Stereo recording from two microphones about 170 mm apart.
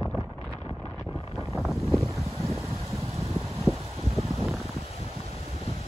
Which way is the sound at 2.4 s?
15° right (ahead or behind).